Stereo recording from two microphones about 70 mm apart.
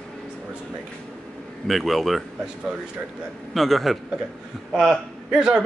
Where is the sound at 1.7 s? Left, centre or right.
Centre.